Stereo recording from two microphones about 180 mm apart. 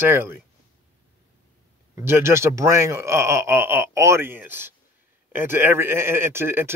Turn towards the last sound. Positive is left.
turn(degrees=-15)  # may be behind; listen again after turning